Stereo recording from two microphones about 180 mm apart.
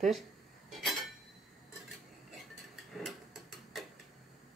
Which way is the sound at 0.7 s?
Centre (ahead or behind).